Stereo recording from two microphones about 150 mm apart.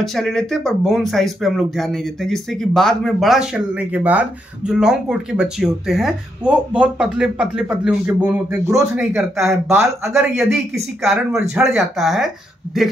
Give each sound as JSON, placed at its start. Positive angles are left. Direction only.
{"t": 0.0, "sound": "speech", "side_deg": 0}
{"t": 10.3, "sound": "speech", "side_deg": 0}